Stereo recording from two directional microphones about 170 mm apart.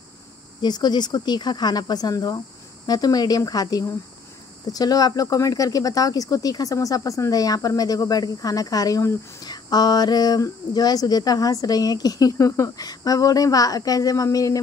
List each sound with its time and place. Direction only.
0.6 s speech: 25° left (ahead or behind)